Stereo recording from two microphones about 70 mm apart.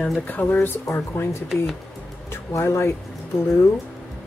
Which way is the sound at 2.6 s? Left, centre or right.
Left.